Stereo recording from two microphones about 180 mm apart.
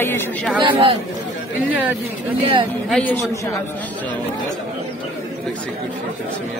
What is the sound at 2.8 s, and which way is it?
Speech, 5° left (ahead or behind).